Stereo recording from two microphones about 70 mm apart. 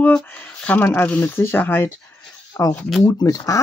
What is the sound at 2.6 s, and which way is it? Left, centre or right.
Speech, left.